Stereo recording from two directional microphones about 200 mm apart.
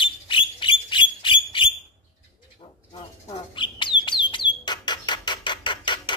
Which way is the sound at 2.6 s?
25° left (ahead or behind).